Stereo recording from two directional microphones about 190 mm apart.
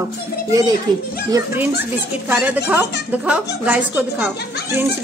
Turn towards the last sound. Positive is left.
turn(degrees=-10)  # may be behind; listen again after turning